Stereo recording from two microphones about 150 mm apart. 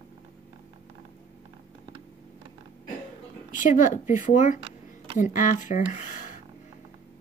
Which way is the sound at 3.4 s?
60° left (ahead or behind).